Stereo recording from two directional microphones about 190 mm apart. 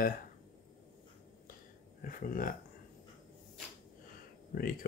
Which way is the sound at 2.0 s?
45° left (ahead or behind).